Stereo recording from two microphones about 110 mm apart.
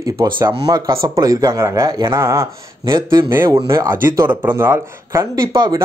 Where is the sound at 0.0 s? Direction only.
30° right (ahead or behind).